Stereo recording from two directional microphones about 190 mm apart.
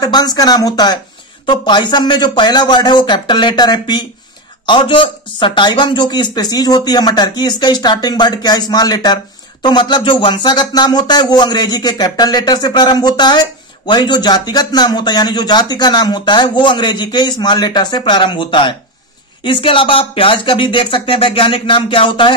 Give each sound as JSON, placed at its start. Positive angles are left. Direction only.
{"t": 0.0, "sound": "speech", "side_deg": 20}